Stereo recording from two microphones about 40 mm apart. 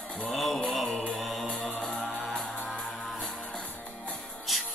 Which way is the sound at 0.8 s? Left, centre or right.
Left.